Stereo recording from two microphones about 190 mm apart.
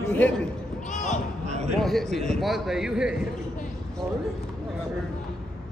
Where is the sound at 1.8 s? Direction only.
Centre (ahead or behind).